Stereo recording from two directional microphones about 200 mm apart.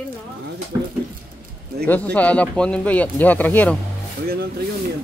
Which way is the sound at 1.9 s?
5° left (ahead or behind).